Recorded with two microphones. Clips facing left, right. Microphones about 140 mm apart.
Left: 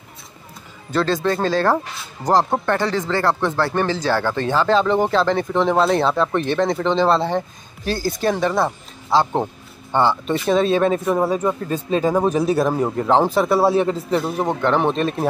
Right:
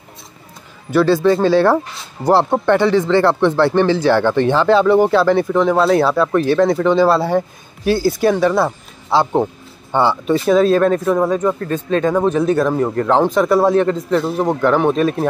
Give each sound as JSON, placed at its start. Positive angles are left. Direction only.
{"t": 0.9, "sound": "speech", "side_deg": -10}
{"t": 9.1, "sound": "speech", "side_deg": -10}
{"t": 10.4, "sound": "speech", "side_deg": 0}